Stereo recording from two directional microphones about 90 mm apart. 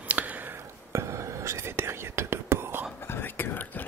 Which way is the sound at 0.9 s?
35° right (ahead or behind).